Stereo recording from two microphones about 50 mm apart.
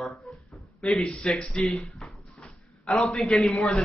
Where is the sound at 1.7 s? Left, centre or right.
Centre.